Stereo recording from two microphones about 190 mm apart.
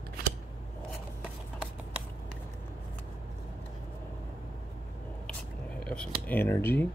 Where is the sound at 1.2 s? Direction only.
5° right (ahead or behind).